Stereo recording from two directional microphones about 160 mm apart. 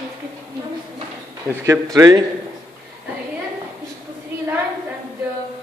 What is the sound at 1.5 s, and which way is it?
Speech, 15° right (ahead or behind).